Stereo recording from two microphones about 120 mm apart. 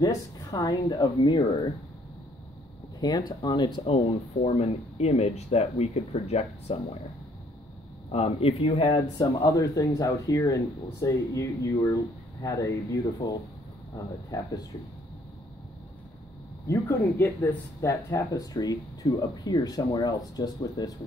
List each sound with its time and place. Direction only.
0.0 s speech: 35° left (ahead or behind)
3.0 s speech: 35° left (ahead or behind); by 6.8 s 60° left (ahead or behind)
8.1 s speech: 55° left (ahead or behind)
9.2 s speech: 35° left (ahead or behind)
16.6 s speech: 20° left (ahead or behind)